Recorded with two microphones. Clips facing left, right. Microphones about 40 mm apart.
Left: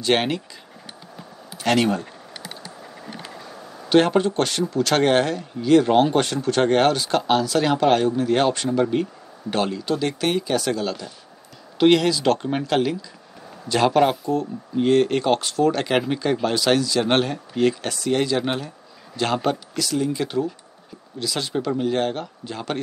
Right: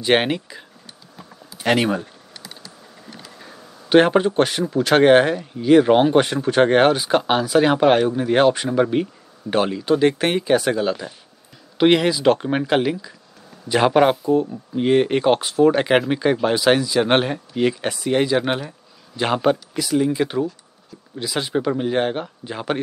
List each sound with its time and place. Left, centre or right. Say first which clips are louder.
0.0 s speech: right 3 dB; centre
1.6 s speech: right 1 dB; centre
3.9 s speech: right 3 dB; centre